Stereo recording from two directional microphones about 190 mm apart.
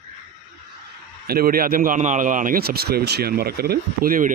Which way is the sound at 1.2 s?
50° right (ahead or behind).